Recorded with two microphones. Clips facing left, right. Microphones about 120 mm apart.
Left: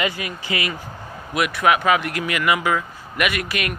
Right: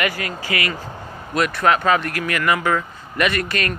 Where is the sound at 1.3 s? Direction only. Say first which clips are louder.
Right 1 dB; 10° left (ahead or behind).